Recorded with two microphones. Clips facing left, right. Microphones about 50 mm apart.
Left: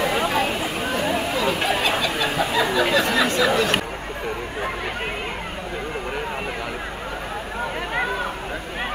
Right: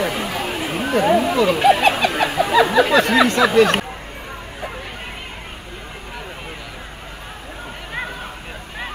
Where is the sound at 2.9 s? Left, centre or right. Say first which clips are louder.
Right 5 dB; right.